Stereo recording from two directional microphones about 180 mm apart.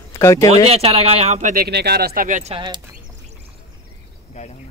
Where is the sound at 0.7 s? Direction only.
35° right (ahead or behind).